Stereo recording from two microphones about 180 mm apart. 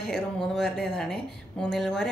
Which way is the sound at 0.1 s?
Centre (ahead or behind).